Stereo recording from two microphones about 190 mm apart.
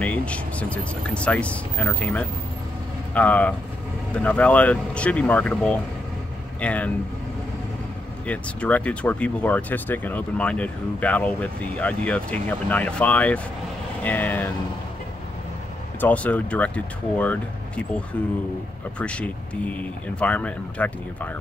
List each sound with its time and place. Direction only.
0.0 s speech: 5° left (ahead or behind)
8.3 s speech: 5° left (ahead or behind)
16.0 s speech: 10° left (ahead or behind)
18.9 s speech: 5° left (ahead or behind)